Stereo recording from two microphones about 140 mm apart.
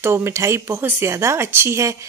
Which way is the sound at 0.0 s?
20° right (ahead or behind).